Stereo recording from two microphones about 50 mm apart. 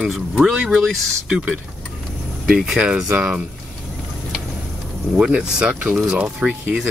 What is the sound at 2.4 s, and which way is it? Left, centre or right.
Speech, centre.